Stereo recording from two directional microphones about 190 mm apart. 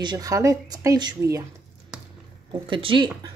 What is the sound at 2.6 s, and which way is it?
Speech, 25° right (ahead or behind).